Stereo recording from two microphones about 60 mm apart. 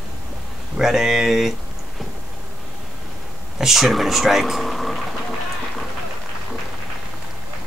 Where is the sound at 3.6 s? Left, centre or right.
Centre.